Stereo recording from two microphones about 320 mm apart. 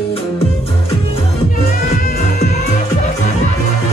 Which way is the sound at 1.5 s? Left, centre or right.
Left.